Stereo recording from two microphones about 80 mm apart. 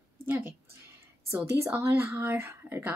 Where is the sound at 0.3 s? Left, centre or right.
Right.